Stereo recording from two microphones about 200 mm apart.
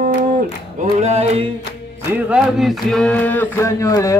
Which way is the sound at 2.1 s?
5° right (ahead or behind).